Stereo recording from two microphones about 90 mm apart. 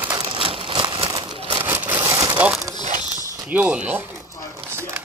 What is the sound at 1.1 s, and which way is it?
Crumpling, 55° right (ahead or behind).